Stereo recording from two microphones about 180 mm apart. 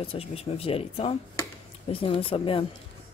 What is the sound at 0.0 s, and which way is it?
Speech, 30° left (ahead or behind).